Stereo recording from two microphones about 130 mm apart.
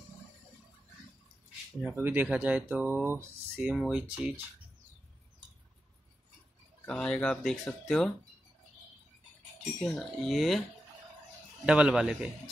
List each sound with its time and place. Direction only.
1.8 s speech: 10° right (ahead or behind)
3.7 s speech: 5° right (ahead or behind)
6.9 s speech: 10° left (ahead or behind)
9.8 s speech: centre (ahead or behind)
11.6 s speech: 5° right (ahead or behind)